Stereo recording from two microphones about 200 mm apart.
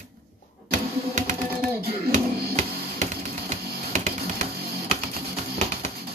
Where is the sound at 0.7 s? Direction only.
40° right (ahead or behind).